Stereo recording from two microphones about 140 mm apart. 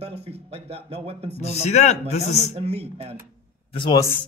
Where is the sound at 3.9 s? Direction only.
20° left (ahead or behind).